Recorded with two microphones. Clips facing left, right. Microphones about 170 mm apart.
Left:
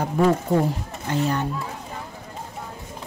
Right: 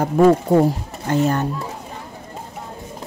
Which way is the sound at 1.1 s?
45° right (ahead or behind).